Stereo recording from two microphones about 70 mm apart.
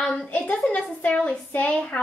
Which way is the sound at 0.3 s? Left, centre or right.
Left.